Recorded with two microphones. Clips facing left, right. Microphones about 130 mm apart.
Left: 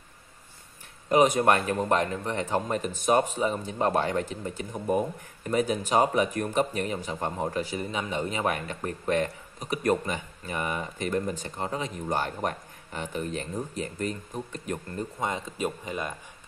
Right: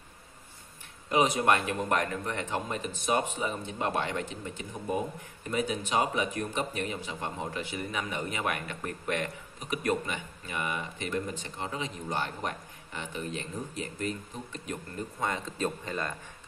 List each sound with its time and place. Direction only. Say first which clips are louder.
1.0 s speech: left 4 dB; 45° left (ahead or behind)
15.1 s speech: even; 20° left (ahead or behind)